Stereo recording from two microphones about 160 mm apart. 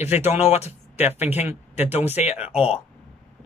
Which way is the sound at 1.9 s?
45° left (ahead or behind).